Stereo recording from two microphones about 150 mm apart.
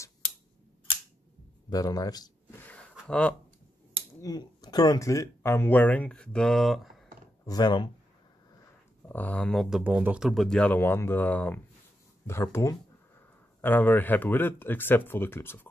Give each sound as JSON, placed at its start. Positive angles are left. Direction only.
{"t": 1.7, "sound": "speech", "side_deg": 25}
{"t": 2.6, "sound": "a sound", "side_deg": 10}
{"t": 4.2, "sound": "speech", "side_deg": 25}
{"t": 7.4, "sound": "speech", "side_deg": 25}
{"t": 9.1, "sound": "speech", "side_deg": 10}